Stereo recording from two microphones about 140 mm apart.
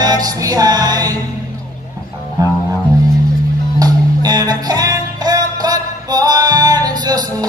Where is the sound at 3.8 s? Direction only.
30° right (ahead or behind).